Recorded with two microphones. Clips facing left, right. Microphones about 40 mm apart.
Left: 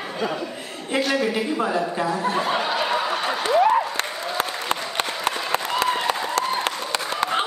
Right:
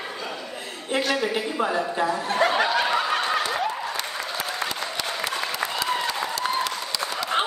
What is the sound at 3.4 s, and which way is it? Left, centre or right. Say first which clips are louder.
Applause: left 8 dB; left.